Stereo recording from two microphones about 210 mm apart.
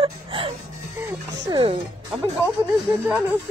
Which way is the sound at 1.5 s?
25° right (ahead or behind).